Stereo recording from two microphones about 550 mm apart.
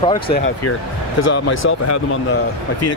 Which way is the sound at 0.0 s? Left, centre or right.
Centre.